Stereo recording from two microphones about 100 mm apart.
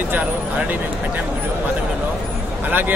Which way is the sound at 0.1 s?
20° right (ahead or behind).